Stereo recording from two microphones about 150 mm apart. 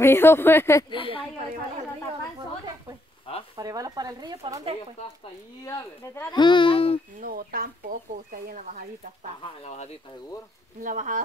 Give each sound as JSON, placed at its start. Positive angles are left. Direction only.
{"t": 0.0, "sound": "speech", "side_deg": 15}
{"t": 0.8, "sound": "a child's voice", "side_deg": 35}
{"t": 3.5, "sound": "speech", "side_deg": -25}
{"t": 6.3, "sound": "a child's voice", "side_deg": 30}
{"t": 7.2, "sound": "speech", "side_deg": -80}
{"t": 9.4, "sound": "speech", "side_deg": 40}
{"t": 10.8, "sound": "speech", "side_deg": -60}